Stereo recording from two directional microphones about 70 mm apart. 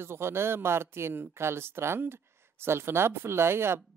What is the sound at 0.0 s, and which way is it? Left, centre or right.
Speech, right.